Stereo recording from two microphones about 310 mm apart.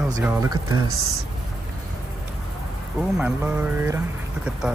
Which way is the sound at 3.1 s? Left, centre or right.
Centre.